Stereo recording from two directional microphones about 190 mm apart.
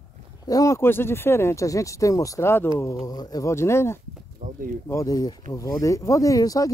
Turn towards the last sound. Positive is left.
turn(degrees=20)  # may be behind; listen again after turning